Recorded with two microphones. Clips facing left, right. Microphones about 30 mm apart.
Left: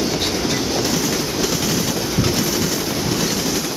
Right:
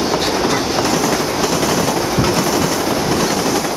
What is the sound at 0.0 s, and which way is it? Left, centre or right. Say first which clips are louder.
Train: right 4 dB; centre.